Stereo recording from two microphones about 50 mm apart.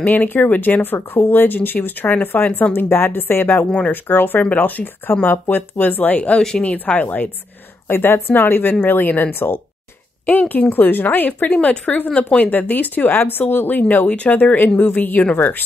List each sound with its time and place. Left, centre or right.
0.0 s a woman's voice: left
7.9 s a woman's voice: left
14.4 s speech: left